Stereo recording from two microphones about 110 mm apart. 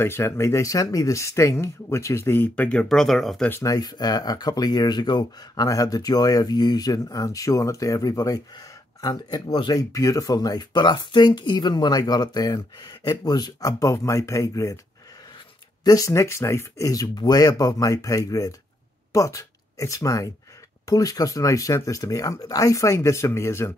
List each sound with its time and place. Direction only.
0.0 s speech: 25° left (ahead or behind); by 3.4 s centre (ahead or behind)
3.6 s speech: 35° left (ahead or behind)
15.8 s speech: 35° left (ahead or behind)